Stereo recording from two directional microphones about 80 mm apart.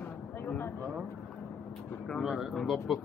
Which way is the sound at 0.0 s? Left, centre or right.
Left.